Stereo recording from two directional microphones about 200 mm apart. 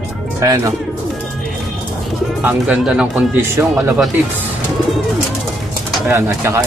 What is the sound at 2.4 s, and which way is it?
Speech, 5° right (ahead or behind).